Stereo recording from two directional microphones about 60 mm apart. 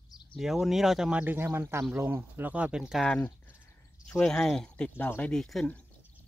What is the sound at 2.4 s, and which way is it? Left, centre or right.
Speech, right.